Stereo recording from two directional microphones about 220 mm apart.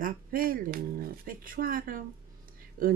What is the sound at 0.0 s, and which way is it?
Speech, 40° right (ahead or behind).